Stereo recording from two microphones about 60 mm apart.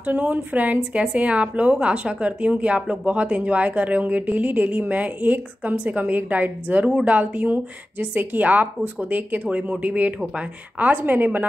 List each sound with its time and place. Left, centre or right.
0.0 s a woman's voice: right